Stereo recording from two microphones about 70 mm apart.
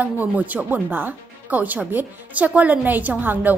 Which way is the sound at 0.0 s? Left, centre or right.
Right.